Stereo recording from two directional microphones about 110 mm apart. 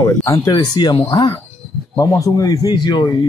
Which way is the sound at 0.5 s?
40° left (ahead or behind).